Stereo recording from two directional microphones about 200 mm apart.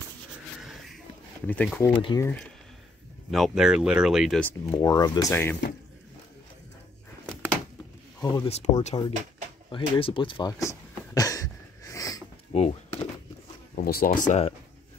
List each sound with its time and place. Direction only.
0.6 s a sound: centre (ahead or behind)
1.5 s speech: 5° left (ahead or behind)
2.0 s speech: 25° left (ahead or behind)
2.2 s speech: 5° left (ahead or behind)
4.5 s speech: 15° left (ahead or behind)
5.3 s speech: 10° left (ahead or behind)
8.2 s speech: 15° left (ahead or behind)
9.7 s a sound: 25° left (ahead or behind)
12.5 s speech: 30° left (ahead or behind)
13.7 s speech: 45° left (ahead or behind)